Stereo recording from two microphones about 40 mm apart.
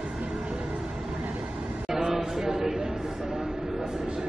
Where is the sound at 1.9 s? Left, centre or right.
Centre.